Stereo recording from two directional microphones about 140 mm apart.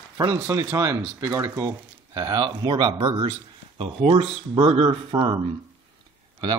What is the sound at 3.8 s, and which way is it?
Speech, 45° right (ahead or behind).